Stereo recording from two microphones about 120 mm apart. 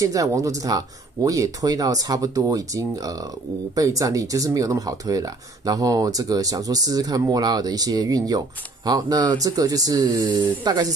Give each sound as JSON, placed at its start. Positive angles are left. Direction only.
{"t": 0.0, "sound": "speech", "side_deg": -30}